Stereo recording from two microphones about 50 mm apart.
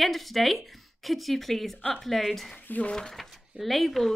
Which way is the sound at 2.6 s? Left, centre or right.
Left.